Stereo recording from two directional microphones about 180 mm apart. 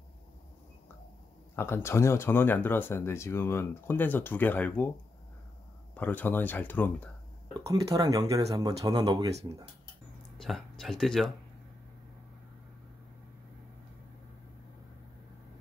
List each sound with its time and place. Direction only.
1.5 s speech: 15° left (ahead or behind)
5.9 s speech: 10° left (ahead or behind)
7.6 s speech: 20° right (ahead or behind)
10.3 s speech: centre (ahead or behind)